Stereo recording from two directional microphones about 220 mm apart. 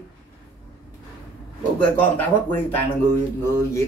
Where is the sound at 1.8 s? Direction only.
10° left (ahead or behind).